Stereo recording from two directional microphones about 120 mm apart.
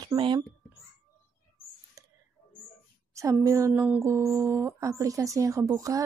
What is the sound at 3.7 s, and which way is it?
Speech, 15° right (ahead or behind).